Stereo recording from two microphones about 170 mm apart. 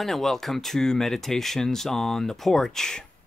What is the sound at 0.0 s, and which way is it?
Speech, centre (ahead or behind).